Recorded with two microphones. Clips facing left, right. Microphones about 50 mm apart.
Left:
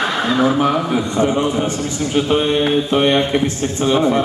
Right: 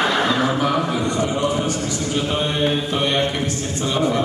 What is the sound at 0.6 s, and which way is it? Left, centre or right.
A man's voice, centre.